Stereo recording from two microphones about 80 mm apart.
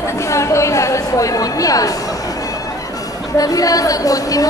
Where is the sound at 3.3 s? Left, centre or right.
Left.